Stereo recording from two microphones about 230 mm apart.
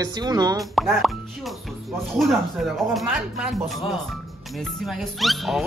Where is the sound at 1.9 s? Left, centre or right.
Centre.